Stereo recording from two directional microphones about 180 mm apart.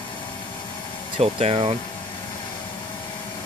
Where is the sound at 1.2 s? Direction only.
35° right (ahead or behind).